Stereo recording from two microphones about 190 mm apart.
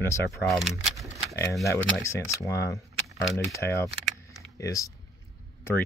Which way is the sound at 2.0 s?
15° left (ahead or behind).